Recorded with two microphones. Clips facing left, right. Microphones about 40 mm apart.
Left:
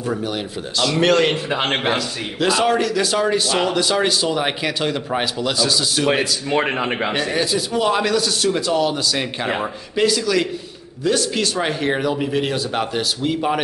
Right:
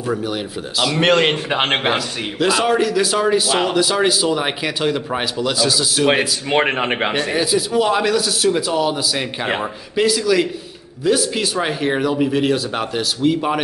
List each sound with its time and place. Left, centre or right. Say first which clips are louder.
0.1 s speech: right 4 dB; centre
1.0 s a man's voice: right 1 dB; right
2.0 s a man's voice: right 2 dB; centre
6.5 s a man's voice: right 3 dB; right
7.2 s a man's voice: right 2 dB; centre